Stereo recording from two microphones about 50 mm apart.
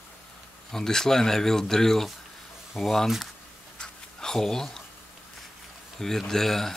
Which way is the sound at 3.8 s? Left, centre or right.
Centre.